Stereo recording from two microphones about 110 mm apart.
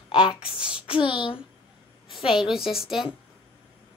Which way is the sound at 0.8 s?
50° left (ahead or behind).